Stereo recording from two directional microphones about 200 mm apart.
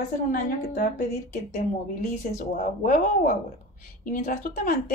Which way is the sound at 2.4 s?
40° left (ahead or behind).